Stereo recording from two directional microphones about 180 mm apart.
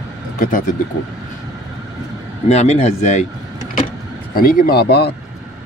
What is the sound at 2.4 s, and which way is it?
Speech, 40° left (ahead or behind).